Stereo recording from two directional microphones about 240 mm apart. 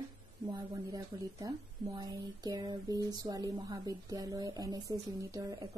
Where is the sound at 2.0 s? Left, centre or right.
Centre.